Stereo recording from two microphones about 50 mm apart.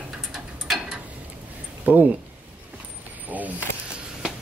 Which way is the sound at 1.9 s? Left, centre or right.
Right.